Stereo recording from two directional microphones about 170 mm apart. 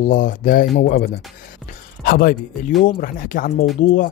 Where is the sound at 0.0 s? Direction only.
55° left (ahead or behind).